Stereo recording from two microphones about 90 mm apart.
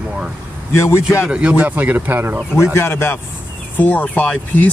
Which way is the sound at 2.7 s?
25° left (ahead or behind).